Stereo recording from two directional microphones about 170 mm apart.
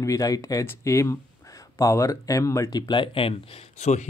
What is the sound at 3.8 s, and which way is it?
Speech, 40° left (ahead or behind).